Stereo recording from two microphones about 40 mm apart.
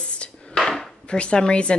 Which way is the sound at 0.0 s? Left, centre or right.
Left.